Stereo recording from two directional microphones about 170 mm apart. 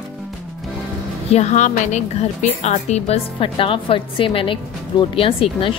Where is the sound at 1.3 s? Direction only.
40° left (ahead or behind).